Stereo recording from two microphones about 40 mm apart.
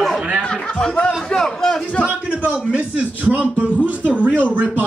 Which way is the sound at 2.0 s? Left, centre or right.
Right.